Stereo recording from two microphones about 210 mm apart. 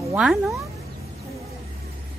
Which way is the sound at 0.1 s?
5° right (ahead or behind).